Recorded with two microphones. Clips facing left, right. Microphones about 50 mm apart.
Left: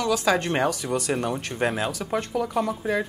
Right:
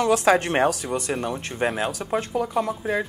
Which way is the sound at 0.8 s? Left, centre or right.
Centre.